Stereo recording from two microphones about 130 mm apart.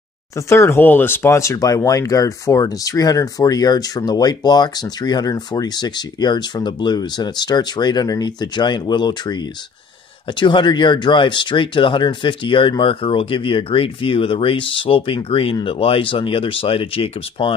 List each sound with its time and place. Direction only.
0.5 s speech: 20° left (ahead or behind)
10.4 s speech: 35° left (ahead or behind)